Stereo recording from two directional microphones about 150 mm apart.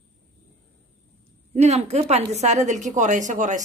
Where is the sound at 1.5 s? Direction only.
45° right (ahead or behind).